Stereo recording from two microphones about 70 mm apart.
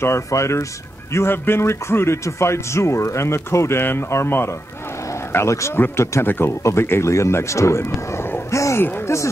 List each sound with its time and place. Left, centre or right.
0.0 s speech: left
1.1 s speech: left